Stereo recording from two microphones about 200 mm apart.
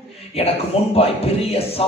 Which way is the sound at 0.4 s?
30° left (ahead or behind).